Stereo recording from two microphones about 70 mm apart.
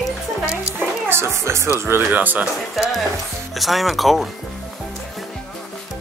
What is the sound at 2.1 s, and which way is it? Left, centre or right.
Speech, right.